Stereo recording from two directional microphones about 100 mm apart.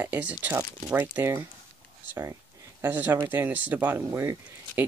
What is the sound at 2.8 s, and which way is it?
Speech, 20° right (ahead or behind).